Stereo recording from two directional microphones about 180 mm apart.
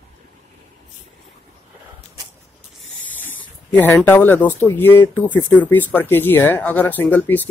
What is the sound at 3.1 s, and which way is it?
Snake, 10° left (ahead or behind).